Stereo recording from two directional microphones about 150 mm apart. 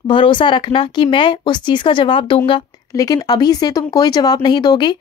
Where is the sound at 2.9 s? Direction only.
25° left (ahead or behind).